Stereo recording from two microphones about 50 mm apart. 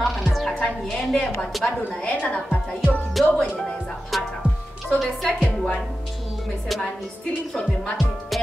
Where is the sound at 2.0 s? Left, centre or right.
Left.